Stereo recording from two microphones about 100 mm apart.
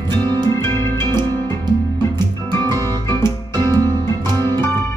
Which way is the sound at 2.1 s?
45° right (ahead or behind).